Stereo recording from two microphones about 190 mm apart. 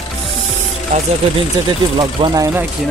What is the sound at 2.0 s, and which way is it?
Speech, 20° right (ahead or behind).